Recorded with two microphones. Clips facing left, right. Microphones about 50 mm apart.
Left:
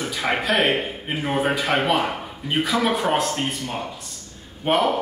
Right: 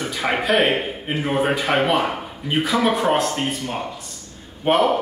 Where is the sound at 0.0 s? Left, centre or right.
Centre.